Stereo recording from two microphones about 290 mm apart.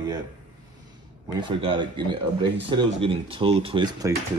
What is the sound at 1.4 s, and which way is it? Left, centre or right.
Speech, centre.